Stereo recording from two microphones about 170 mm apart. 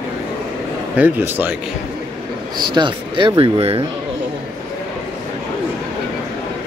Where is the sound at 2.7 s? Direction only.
30° right (ahead or behind).